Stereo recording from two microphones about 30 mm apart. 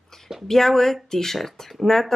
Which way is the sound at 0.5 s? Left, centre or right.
Centre.